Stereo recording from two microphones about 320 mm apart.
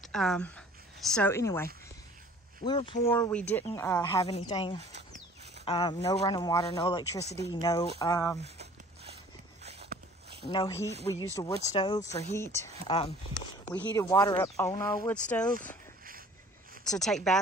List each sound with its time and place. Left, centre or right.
0.1 s speech: centre
7.2 s speech: centre
8.0 s speech: centre
8.4 s a sound: centre
10.5 s speech: centre
16.8 s speech: centre